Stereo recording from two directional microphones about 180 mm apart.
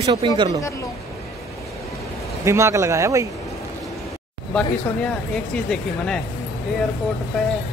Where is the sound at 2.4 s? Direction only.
15° right (ahead or behind).